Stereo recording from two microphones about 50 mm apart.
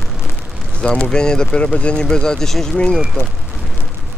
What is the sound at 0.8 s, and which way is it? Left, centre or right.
Speech, centre.